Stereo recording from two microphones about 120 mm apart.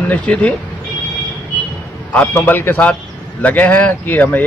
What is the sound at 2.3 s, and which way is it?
Speech, 15° left (ahead or behind).